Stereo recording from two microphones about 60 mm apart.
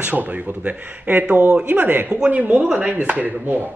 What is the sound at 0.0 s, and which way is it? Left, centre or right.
Speech, right.